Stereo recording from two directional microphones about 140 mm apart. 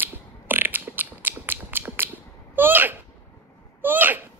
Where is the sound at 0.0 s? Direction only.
15° right (ahead or behind).